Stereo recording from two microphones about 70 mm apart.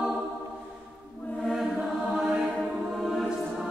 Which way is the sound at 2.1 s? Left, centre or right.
Centre.